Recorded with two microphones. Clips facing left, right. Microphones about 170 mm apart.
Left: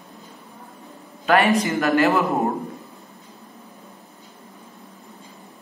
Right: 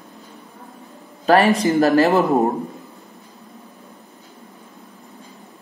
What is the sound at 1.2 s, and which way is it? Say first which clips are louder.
Speech: right 3 dB; 35° right (ahead or behind).